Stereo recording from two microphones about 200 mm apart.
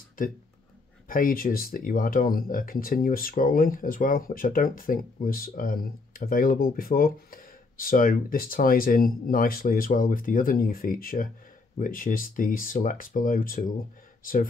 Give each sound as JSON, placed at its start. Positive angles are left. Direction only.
{"t": 0.2, "sound": "speech", "side_deg": 45}